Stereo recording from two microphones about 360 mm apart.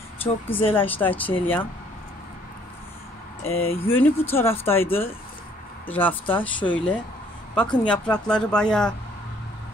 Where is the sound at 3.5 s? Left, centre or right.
Centre.